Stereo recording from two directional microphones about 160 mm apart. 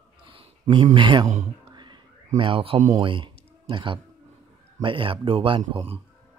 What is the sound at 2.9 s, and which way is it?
Speech, 30° right (ahead or behind).